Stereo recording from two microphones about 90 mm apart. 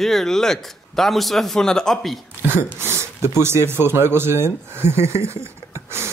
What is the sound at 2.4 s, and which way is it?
Speech, 25° right (ahead or behind).